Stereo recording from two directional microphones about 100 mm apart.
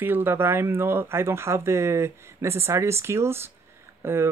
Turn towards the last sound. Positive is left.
turn(degrees=-25)  # may be behind; listen again after turning